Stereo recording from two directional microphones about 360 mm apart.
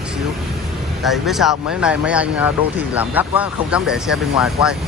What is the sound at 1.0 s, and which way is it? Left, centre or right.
Speech, centre.